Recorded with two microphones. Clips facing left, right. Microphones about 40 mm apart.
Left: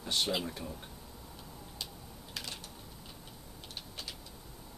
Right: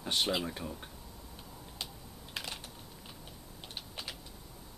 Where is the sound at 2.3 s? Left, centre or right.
Centre.